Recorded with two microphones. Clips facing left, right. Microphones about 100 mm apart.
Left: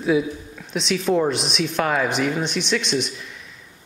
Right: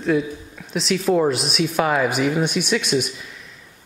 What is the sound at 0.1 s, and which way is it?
Speech, 5° left (ahead or behind).